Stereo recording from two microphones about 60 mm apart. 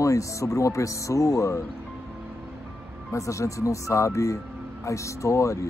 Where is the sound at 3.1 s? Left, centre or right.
Left.